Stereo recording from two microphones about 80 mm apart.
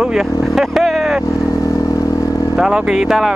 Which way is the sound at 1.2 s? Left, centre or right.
Left.